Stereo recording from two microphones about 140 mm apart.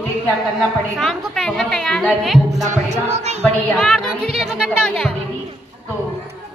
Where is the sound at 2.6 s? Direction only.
55° right (ahead or behind).